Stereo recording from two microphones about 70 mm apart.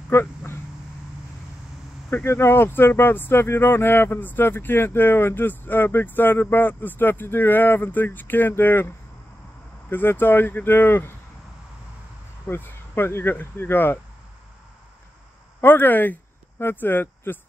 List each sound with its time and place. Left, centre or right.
0.1 s a sound: left
2.0 s speech: left
12.4 s speech: left
15.6 s speech: left